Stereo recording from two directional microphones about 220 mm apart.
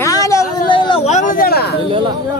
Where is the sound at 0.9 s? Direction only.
30° left (ahead or behind); by 1.8 s 45° left (ahead or behind).